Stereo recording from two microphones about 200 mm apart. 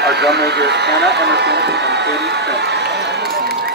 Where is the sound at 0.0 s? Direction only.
55° right (ahead or behind).